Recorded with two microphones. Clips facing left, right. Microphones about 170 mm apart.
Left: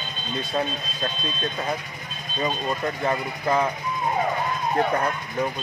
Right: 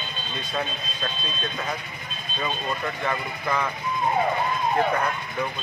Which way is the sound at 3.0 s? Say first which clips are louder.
Left 4 dB; 35° left (ahead or behind).